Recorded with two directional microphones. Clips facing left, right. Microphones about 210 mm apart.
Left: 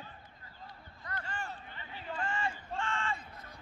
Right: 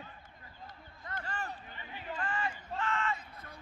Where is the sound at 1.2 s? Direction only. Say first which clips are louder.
Right 1 dB; 40° right (ahead or behind).